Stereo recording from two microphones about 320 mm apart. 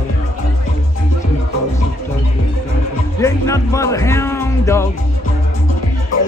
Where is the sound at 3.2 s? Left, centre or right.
Centre.